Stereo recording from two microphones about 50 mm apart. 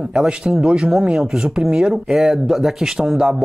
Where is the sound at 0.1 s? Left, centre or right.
Centre.